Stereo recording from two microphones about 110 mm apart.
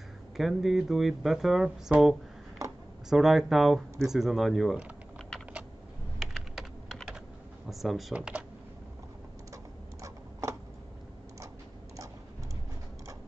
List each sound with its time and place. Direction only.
0.4 s speech: centre (ahead or behind)
6.3 s typing: centre (ahead or behind)
7.7 s speech: centre (ahead or behind)